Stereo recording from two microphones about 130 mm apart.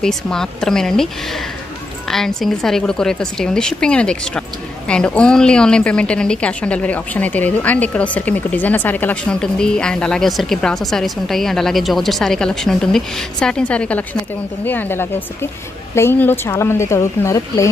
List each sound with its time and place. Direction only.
0.0 s a woman's voice: 5° left (ahead or behind)
2.0 s a woman's voice: 5° left (ahead or behind); by 17.6 s 25° left (ahead or behind)